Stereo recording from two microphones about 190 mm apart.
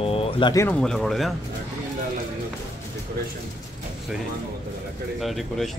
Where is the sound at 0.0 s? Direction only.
30° left (ahead or behind).